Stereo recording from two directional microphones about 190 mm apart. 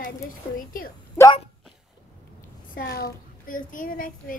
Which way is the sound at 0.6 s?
45° left (ahead or behind).